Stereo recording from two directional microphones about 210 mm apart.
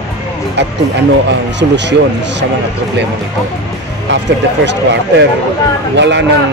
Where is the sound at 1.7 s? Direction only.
55° right (ahead or behind).